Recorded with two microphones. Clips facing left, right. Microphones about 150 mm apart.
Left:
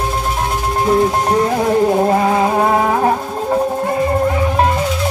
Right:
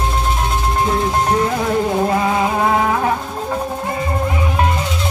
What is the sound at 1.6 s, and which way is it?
Music, 35° left (ahead or behind).